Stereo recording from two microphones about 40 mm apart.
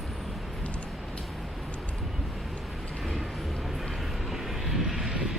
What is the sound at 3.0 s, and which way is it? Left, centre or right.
Vehicle, centre.